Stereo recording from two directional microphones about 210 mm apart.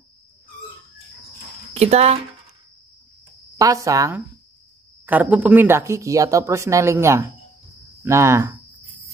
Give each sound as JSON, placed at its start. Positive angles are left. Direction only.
{"t": 1.7, "sound": "speech", "side_deg": -30}
{"t": 3.5, "sound": "speech", "side_deg": -15}